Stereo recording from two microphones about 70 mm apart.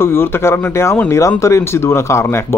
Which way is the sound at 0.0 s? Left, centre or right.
Left.